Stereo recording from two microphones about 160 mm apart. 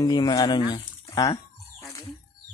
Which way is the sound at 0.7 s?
25° left (ahead or behind).